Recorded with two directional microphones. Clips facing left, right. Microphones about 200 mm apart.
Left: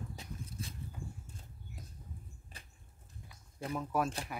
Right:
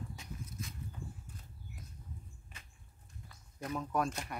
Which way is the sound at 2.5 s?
35° left (ahead or behind).